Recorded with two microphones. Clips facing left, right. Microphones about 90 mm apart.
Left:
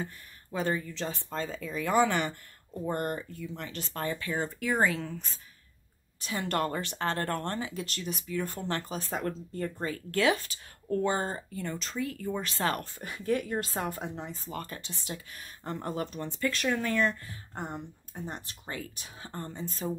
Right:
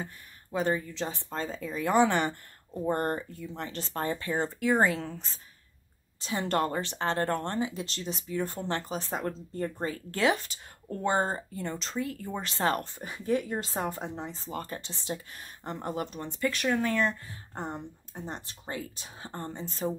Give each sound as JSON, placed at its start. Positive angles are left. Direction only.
{"t": 0.0, "sound": "speech", "side_deg": -15}
{"t": 17.6, "sound": "speech", "side_deg": -30}